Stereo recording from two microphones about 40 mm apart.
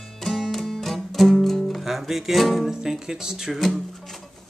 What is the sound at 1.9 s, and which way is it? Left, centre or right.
Music, centre.